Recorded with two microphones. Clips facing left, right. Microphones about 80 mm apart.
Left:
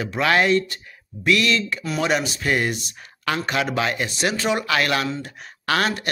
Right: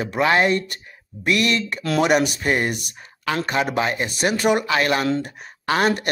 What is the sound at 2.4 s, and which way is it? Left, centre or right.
Speech, right.